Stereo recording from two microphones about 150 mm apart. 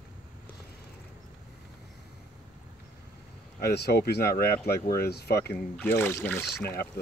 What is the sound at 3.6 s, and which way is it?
Speech, 90° left.